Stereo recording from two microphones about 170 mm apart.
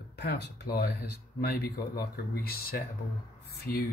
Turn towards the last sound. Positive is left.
turn(degrees=70)  # may be behind; listen again after turning